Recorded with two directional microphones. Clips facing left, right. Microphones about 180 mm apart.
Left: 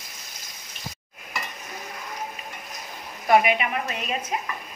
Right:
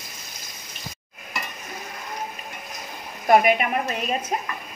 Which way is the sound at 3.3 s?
45° right (ahead or behind).